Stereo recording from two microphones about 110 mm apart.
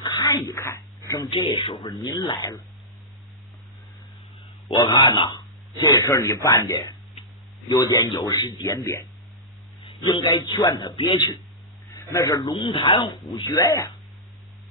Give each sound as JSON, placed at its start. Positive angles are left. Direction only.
{"t": 0.0, "sound": "a sound", "side_deg": 35}
{"t": 0.5, "sound": "a sound", "side_deg": 25}
{"t": 1.3, "sound": "a man's voice", "side_deg": 50}
{"t": 1.8, "sound": "speech", "side_deg": 35}
{"t": 4.8, "sound": "speech", "side_deg": 50}
{"t": 7.7, "sound": "speech", "side_deg": 30}
{"t": 9.8, "sound": "a man's voice", "side_deg": 45}
{"t": 11.9, "sound": "a man's voice", "side_deg": 25}
{"t": 12.6, "sound": "speech", "side_deg": 50}